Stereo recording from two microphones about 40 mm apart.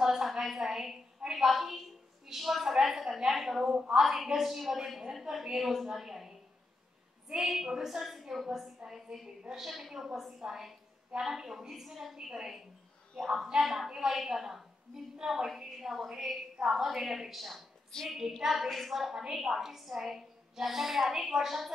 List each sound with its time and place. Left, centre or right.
0.0 s a woman's voice: centre
7.3 s a woman's voice: centre
17.9 s child singing: centre
18.4 s a woman's voice: centre